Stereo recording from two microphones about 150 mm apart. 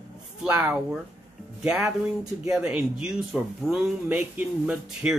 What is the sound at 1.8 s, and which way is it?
Speech, 20° right (ahead or behind).